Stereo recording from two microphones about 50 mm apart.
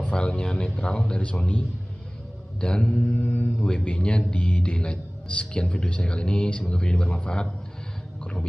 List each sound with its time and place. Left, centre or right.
0.0 s a man's voice: centre
2.6 s a man's voice: centre
8.2 s a sound: left